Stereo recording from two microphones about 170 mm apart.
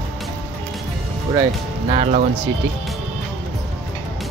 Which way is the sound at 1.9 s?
45° right (ahead or behind).